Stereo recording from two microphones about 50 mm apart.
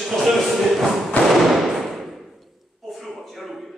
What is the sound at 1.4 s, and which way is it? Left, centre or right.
Fireworks, centre.